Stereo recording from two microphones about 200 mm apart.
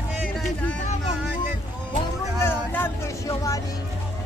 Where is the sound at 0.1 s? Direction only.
5° right (ahead or behind).